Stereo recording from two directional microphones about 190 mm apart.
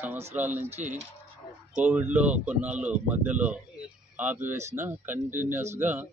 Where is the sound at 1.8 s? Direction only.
10° right (ahead or behind).